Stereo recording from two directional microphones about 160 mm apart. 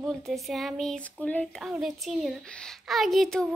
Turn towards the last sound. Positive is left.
turn(degrees=0)  # may be behind; listen again after turning